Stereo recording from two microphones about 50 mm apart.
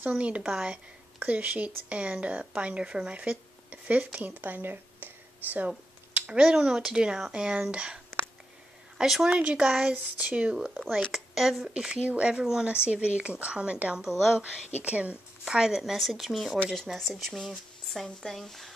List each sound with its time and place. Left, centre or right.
0.1 s speech: right
1.2 s speech: right
6.1 s speech: right
8.9 s speech: centre
9.4 s speech: right
9.7 s speech: centre
9.9 s a sound: right
10.3 s speech: right
10.6 s a woman's voice: centre
11.7 s speech: centre
14.0 s a woman's voice: centre
14.4 s speech: right
15.4 s speech: centre
15.8 s a woman's voice: centre